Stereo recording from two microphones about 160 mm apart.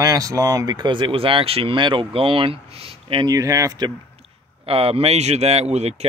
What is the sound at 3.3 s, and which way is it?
Speech, 20° right (ahead or behind).